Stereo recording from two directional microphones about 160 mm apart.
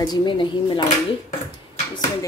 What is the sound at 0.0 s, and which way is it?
Speech, 25° left (ahead or behind).